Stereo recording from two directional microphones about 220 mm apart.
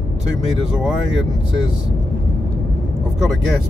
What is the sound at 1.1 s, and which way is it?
Speech, 55° right (ahead or behind).